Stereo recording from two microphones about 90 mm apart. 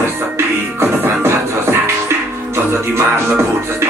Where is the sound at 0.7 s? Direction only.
30° right (ahead or behind).